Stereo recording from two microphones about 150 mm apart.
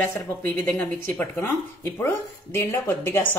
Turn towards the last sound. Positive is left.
turn(degrees=15)  # may be behind; listen again after turning